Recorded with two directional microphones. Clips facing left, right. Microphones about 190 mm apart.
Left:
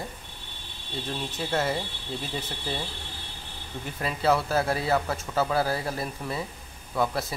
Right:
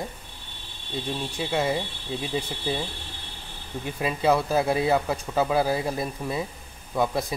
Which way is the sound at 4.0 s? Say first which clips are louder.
Right 2 dB; 15° right (ahead or behind).